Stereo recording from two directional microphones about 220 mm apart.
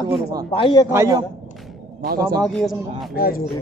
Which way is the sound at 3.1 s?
40° left (ahead or behind).